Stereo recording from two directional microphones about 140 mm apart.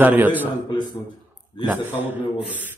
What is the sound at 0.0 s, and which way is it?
Speech, 15° right (ahead or behind).